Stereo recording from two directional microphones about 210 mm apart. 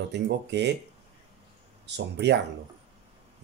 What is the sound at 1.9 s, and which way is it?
Speech, 55° right (ahead or behind).